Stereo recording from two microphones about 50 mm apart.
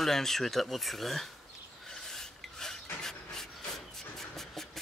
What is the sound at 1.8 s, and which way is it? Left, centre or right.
Filing, centre.